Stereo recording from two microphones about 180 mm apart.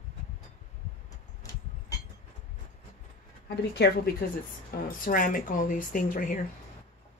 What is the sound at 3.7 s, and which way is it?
Speech, 65° left (ahead or behind).